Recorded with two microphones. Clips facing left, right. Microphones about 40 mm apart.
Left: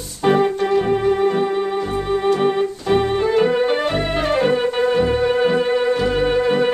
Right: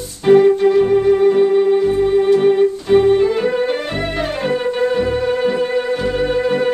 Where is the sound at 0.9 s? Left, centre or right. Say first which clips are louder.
Right 5 dB; centre.